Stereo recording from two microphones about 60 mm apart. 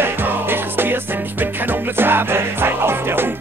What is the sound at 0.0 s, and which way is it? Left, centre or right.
Music, right.